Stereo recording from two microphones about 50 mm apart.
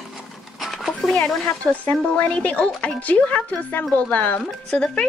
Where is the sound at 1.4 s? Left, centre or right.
Left.